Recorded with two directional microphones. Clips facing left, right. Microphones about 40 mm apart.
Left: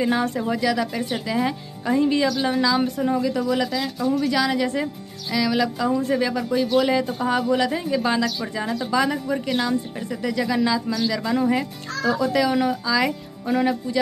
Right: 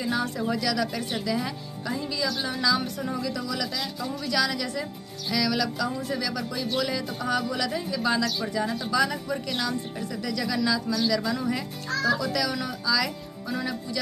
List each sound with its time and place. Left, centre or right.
0.0 s speech: left
0.4 s a woman's voice: left
2.0 s speech: left
2.5 s a woman's voice: centre; by 6.4 s left
6.5 s speech: centre
6.9 s a woman's voice: left